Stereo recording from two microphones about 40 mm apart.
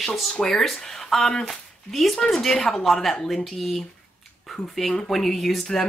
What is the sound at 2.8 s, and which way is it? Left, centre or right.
Speech, centre.